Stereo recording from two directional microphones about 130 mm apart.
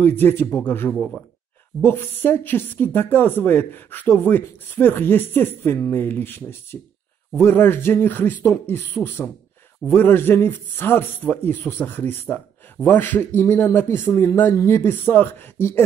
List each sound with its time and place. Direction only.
0.0 s speech: 15° left (ahead or behind)
0.9 s speech: 5° left (ahead or behind)
1.8 s speech: 15° left (ahead or behind)